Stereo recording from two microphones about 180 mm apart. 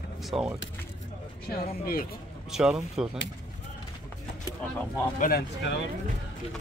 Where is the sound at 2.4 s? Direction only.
5° right (ahead or behind).